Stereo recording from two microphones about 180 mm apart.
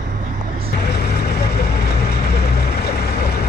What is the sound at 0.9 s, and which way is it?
Vehicle, 65° left (ahead or behind).